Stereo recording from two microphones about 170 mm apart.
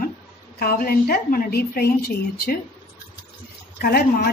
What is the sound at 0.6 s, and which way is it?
A woman's voice, 60° left (ahead or behind).